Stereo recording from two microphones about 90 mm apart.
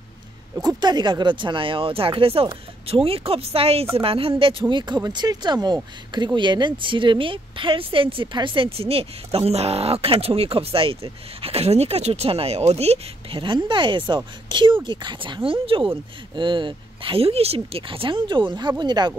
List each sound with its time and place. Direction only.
0.6 s a woman's voice: 50° right (ahead or behind); by 12.4 s 90° right
13.3 s speech: 65° right (ahead or behind)
16.3 s speech: 60° right (ahead or behind)